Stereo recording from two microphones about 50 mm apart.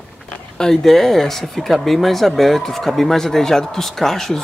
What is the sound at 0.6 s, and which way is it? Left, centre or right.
Speech, centre.